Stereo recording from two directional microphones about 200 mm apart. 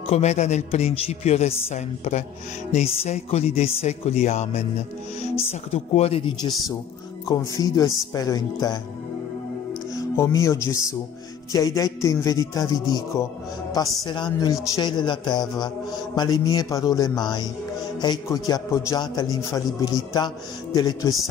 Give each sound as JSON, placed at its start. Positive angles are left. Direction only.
{"t": 0.0, "sound": "a man's voice", "side_deg": 30}
{"t": 7.6, "sound": "a man's voice", "side_deg": 15}
{"t": 9.9, "sound": "a man's voice", "side_deg": 15}